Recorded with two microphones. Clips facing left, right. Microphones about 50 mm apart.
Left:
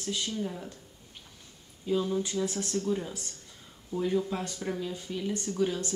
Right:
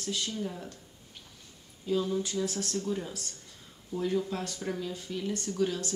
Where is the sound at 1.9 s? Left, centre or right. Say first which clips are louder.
Left 1 dB; centre.